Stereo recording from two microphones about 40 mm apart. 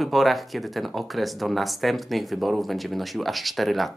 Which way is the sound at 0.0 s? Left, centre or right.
Centre.